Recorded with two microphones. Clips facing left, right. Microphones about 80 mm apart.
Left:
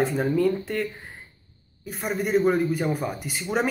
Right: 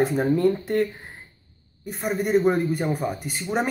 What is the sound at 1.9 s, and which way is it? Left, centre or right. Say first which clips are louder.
Speech: right 2 dB; centre.